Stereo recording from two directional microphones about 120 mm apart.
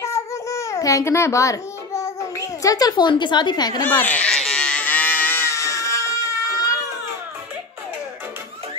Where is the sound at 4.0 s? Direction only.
10° left (ahead or behind).